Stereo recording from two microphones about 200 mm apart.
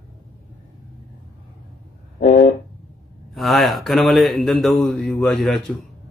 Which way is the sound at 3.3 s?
Centre (ahead or behind).